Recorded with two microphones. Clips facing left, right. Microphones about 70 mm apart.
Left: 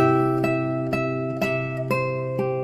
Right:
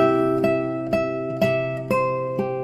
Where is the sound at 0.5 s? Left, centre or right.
Centre.